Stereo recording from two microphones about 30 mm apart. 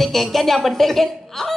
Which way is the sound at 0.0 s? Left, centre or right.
Centre.